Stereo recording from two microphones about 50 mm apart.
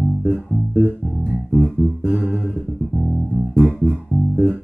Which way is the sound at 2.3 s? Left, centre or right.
Centre.